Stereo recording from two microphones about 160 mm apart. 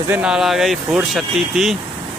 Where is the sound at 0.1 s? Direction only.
5° right (ahead or behind).